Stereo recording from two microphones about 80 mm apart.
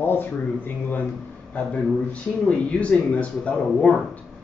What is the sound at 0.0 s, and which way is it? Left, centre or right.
Speech, left.